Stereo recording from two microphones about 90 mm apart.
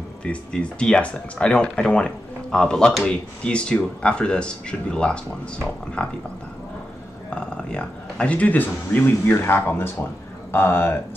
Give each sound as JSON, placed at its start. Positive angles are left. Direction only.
{"t": 0.2, "sound": "speech", "side_deg": 10}
{"t": 7.2, "sound": "speech", "side_deg": 10}